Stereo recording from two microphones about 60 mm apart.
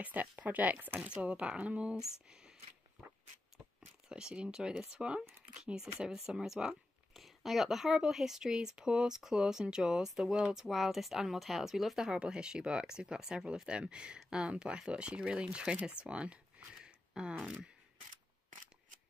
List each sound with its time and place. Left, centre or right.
0.0 s speech: right
2.2 s a sound: centre
3.8 s speech: centre